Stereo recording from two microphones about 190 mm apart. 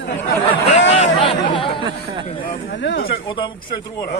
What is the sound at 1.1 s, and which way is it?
Speech, 25° left (ahead or behind).